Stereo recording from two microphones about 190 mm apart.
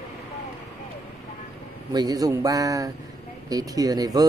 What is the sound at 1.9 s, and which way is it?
A man's voice, 20° right (ahead or behind).